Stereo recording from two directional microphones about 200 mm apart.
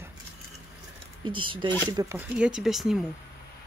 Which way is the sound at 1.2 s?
25° right (ahead or behind).